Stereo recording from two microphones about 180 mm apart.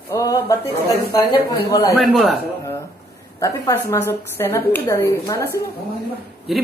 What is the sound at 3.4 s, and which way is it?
A woman's voice, 15° left (ahead or behind).